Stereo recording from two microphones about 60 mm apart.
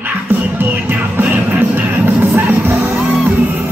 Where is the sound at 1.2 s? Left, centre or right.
Right.